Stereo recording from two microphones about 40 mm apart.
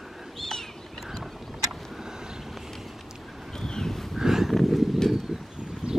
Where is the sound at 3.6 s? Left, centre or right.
Centre.